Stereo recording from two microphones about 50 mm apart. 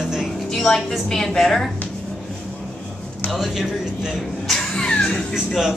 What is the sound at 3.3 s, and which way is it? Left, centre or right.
Speech, centre.